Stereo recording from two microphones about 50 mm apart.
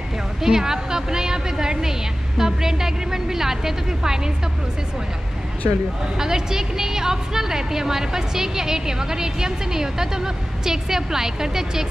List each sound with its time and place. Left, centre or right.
0.4 s a woman's voice: centre
6.1 s a woman's voice: centre